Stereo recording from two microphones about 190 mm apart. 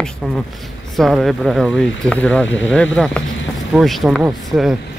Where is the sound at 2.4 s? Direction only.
85° left.